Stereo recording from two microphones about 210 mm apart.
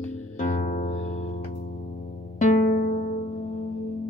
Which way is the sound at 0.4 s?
35° left (ahead or behind).